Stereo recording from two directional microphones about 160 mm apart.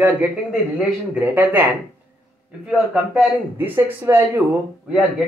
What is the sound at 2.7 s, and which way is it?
A man's voice, 10° right (ahead or behind).